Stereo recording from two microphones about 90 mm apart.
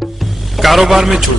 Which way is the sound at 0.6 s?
Centre (ahead or behind).